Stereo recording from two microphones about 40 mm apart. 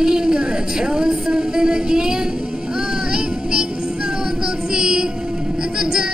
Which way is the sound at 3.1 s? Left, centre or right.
Centre.